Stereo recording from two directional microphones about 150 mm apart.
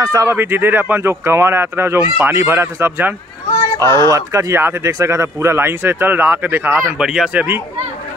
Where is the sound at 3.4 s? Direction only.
20° left (ahead or behind).